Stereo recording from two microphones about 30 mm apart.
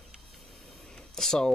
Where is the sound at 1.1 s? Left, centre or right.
Centre.